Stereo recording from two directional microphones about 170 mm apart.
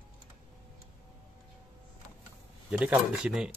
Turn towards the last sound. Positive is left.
turn(degrees=-5)  # may be behind; listen again after turning